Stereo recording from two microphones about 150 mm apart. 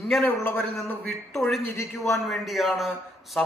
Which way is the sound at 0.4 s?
15° left (ahead or behind).